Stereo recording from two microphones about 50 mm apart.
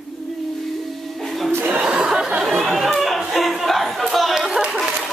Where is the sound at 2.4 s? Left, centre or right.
Centre.